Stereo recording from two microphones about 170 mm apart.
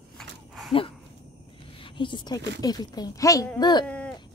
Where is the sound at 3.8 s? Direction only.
5° left (ahead or behind).